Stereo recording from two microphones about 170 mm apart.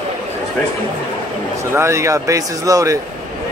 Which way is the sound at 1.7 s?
15° right (ahead or behind).